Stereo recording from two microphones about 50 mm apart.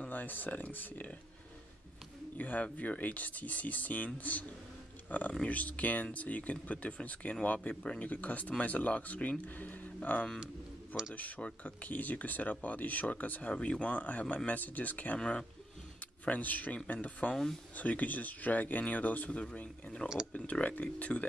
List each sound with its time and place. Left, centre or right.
0.0 s speech: left
2.3 s speech: left
15.1 s speech: left
16.0 s speech: left